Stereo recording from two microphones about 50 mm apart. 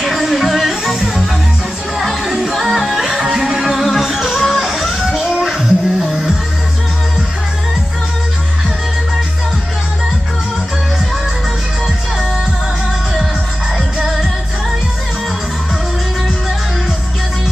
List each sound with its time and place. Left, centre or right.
0.0 s music: centre
13.9 s music: centre